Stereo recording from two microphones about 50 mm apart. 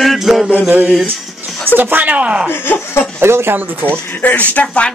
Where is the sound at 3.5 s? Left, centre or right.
Right.